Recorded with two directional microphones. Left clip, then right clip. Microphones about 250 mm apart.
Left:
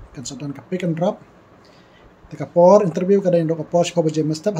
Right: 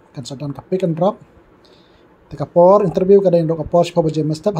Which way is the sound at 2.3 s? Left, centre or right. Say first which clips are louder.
Right 1 dB; centre.